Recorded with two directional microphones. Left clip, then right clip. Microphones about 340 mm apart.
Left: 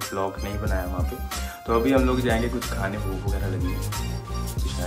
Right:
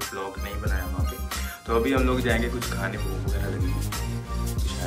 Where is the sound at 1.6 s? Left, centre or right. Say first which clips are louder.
Left 2 dB; centre.